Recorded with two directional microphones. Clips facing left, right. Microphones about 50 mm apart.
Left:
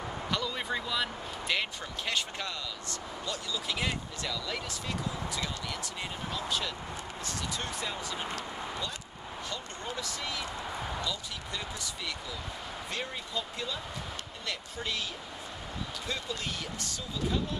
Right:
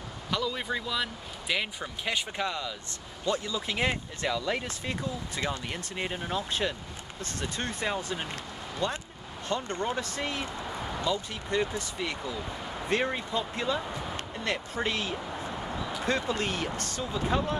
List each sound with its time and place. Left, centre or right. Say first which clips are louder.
0.3 s a man's voice: right 3 dB; centre
3.3 s speech: right 7 dB; right
9.5 s speech: right 11 dB; right
10.6 s a sound: right 1 dB; centre
11.0 s speech: right 5 dB; right